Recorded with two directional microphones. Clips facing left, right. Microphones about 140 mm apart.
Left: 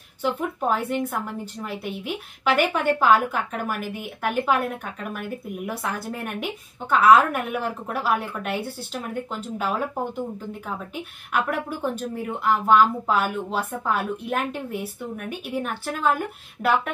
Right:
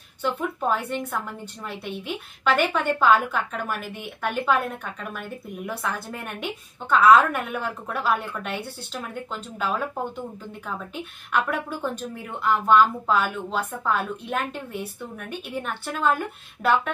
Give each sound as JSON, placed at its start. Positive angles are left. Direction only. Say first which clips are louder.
{"t": 0.2, "sound": "speech", "louder": "left 1 dB", "side_deg": 10}
{"t": 11.3, "sound": "speech", "louder": "even", "side_deg": 10}